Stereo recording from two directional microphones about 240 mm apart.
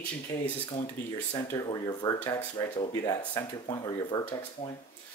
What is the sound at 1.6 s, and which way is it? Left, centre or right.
Speech, centre.